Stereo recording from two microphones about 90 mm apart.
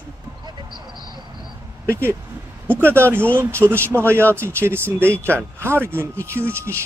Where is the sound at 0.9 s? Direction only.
55° right (ahead or behind).